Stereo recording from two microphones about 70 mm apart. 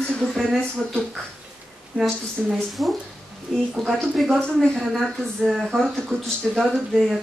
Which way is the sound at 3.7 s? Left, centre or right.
Centre.